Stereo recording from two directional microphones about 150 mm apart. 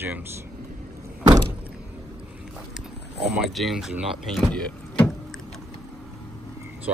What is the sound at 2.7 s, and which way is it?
Speech, centre (ahead or behind).